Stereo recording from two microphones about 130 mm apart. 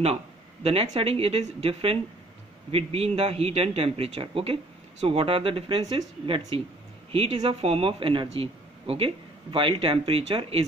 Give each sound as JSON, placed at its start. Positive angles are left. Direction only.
{"t": 1.0, "sound": "speech", "side_deg": -50}